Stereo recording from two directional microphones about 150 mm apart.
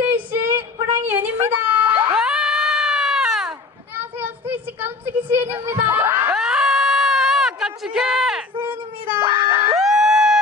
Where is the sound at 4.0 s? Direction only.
10° right (ahead or behind).